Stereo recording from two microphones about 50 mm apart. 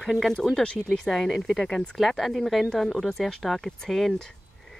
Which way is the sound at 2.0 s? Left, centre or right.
Centre.